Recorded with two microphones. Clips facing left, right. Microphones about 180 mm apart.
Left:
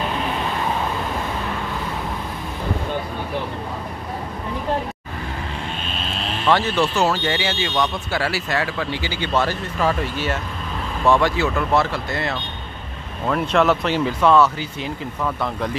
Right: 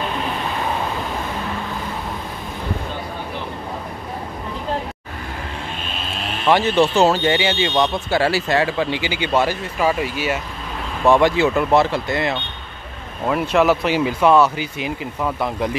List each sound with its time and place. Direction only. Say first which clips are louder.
6.4 s speech: right 3 dB; 20° right (ahead or behind)
13.3 s speech: right 1 dB; 5° right (ahead or behind)